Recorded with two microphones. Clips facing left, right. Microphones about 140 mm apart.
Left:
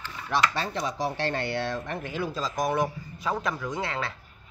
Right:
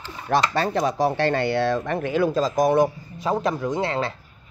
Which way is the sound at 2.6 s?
35° right (ahead or behind).